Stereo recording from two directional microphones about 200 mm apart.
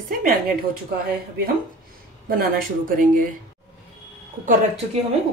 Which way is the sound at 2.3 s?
45° right (ahead or behind).